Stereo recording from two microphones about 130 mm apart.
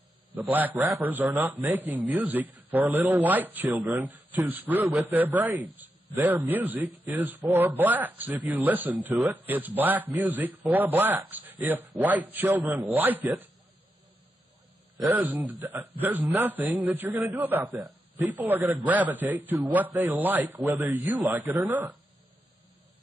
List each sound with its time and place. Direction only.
0.3 s a man's voice: 15° right (ahead or behind)
15.0 s a man's voice: 15° right (ahead or behind)
17.6 s a man's voice: 25° right (ahead or behind)
18.3 s a man's voice: 15° right (ahead or behind)